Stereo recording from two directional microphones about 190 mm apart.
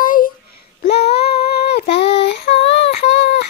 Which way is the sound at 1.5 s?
60° left (ahead or behind).